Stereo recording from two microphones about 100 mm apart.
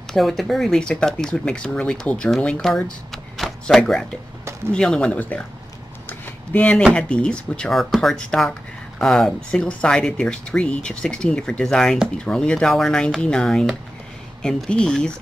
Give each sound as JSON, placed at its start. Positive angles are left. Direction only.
{"t": 0.1, "sound": "speech", "side_deg": 0}
{"t": 6.0, "sound": "a sound", "side_deg": 20}
{"t": 6.8, "sound": "speech", "side_deg": 10}